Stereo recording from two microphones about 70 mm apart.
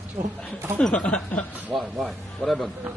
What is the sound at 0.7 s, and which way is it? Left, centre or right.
Speech, centre.